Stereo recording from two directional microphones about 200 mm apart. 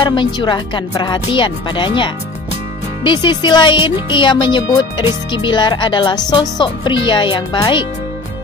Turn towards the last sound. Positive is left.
turn(degrees=25)  # may be behind; listen again after turning